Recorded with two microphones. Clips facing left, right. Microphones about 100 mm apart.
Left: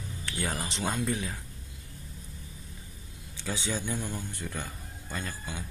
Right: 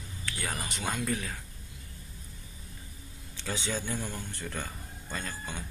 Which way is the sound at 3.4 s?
15° left (ahead or behind).